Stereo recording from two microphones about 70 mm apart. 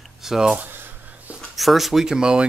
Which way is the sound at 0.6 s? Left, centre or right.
Right.